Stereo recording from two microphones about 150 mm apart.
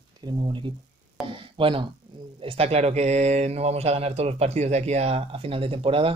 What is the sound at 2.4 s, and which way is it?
Speech, 40° right (ahead or behind).